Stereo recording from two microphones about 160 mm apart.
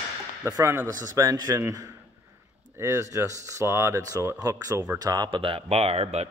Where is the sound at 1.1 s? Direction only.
25° right (ahead or behind).